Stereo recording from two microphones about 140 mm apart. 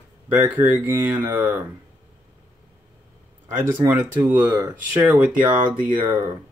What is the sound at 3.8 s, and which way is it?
Speech, 15° right (ahead or behind).